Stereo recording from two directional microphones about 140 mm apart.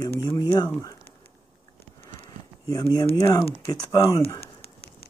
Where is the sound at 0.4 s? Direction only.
30° left (ahead or behind).